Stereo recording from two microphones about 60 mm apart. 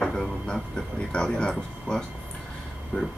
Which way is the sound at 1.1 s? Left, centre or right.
Centre.